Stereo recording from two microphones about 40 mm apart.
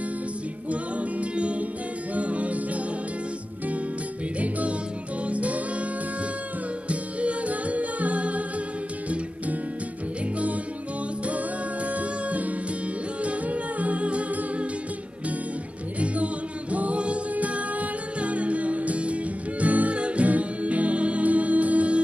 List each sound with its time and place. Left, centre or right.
0.7 s music: right
4.4 s music: right
6.9 s music: right
11.2 s music: right
16.7 s music: right